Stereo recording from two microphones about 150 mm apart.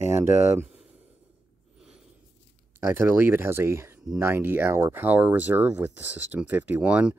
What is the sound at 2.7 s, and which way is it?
Speech, 15° right (ahead or behind).